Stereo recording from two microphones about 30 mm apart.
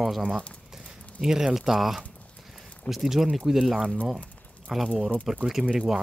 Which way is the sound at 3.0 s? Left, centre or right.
Centre.